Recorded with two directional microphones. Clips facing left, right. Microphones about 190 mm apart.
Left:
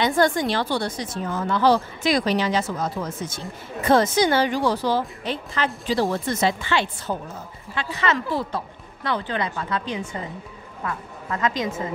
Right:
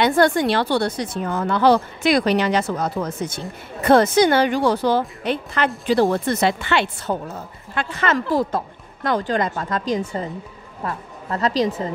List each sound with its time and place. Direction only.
0.0 s a woman's voice: 65° right (ahead or behind)
7.7 s a woman's voice: 50° right (ahead or behind); by 11.9 s 35° right (ahead or behind)